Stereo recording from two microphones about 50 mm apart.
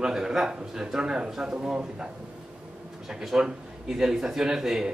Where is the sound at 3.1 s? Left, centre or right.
Centre.